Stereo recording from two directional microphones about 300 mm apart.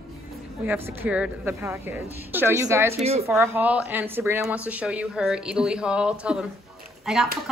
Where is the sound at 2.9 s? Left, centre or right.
Centre.